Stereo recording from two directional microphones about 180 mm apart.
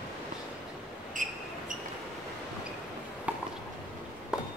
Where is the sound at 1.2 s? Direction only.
45° right (ahead or behind).